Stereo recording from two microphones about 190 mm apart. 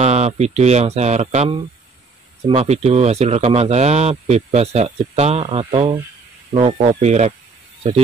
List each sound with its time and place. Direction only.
0.0 s speech: 35° right (ahead or behind)